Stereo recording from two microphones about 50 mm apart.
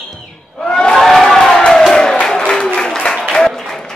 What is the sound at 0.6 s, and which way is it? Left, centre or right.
Crowd, centre.